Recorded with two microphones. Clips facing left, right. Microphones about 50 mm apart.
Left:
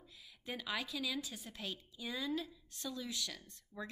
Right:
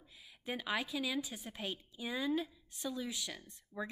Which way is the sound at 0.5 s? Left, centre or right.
Right.